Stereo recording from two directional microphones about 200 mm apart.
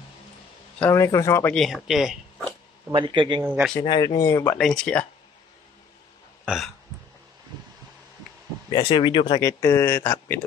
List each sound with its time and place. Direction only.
0.7 s speech: 10° left (ahead or behind)
2.9 s a man's voice: 25° right (ahead or behind)
3.4 s speech: 10° right (ahead or behind)
3.8 s speech: 20° left (ahead or behind); by 5.0 s 5° left (ahead or behind)
6.4 s hiccup: centre (ahead or behind)
8.7 s speech: 25° left (ahead or behind)